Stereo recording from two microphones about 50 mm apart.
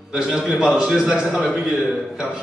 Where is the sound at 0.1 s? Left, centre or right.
Centre.